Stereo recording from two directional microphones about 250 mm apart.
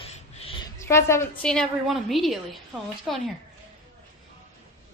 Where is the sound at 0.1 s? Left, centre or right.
Left.